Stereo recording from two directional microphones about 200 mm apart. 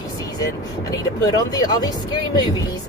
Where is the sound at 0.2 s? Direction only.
20° left (ahead or behind).